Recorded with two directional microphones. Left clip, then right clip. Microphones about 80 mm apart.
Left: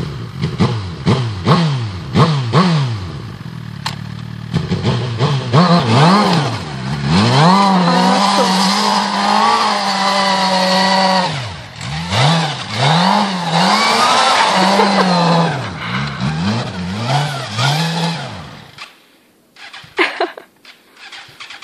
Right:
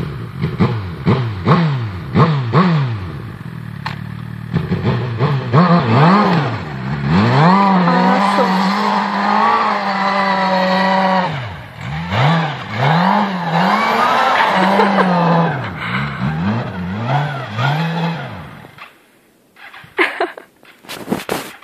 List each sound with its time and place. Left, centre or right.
0.0 s vehicle: centre
4.5 s vehicle: centre
20.0 s a sound: left